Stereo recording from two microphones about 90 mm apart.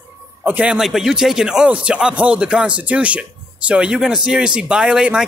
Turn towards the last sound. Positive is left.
turn(degrees=-10)  # may be behind; listen again after turning